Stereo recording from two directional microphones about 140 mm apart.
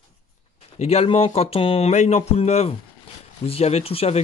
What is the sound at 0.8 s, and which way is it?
Speech, 45° left (ahead or behind).